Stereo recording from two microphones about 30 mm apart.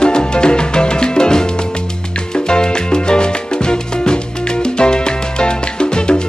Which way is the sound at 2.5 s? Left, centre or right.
Left.